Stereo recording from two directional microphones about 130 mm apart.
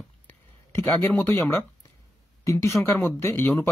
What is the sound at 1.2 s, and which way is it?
Speech, 15° left (ahead or behind).